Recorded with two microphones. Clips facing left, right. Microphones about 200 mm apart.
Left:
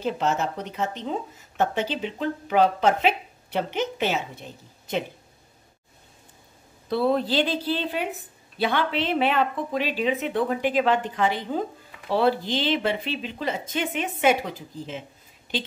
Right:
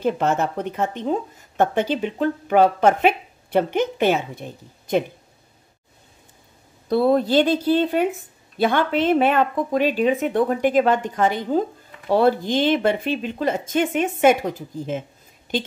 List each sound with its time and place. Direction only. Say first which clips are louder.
0.0 s speech: right 4 dB; 55° right (ahead or behind)
6.9 s speech: right 5 dB; 45° right (ahead or behind)